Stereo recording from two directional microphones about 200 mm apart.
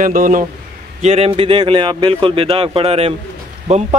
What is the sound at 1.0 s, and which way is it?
Speech, 30° right (ahead or behind).